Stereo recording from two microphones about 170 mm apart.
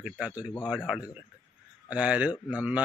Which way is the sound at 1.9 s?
5° right (ahead or behind).